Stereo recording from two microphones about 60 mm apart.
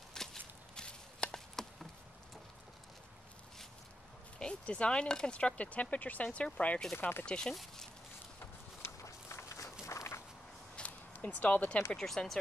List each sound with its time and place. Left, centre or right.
0.1 s chop: centre
4.4 s speech: centre
7.0 s speech: left
7.2 s speech: centre
7.5 s a sound: centre
9.0 s walk: left
10.8 s a sound: centre
11.1 s speech: left
11.9 s speech: centre